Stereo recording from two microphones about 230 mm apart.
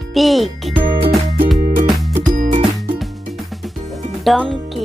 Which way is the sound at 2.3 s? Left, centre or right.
Right.